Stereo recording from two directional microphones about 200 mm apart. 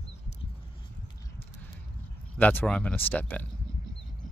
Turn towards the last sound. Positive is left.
turn(degrees=10)  # may be behind; listen again after turning